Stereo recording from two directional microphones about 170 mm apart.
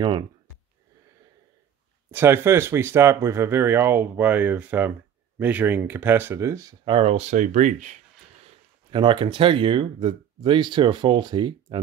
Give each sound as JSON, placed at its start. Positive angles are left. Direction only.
{"t": 2.0, "sound": "speech", "side_deg": -15}
{"t": 8.9, "sound": "speech", "side_deg": -30}